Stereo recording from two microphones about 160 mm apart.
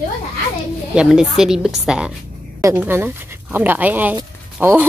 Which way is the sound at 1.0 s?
5° right (ahead or behind).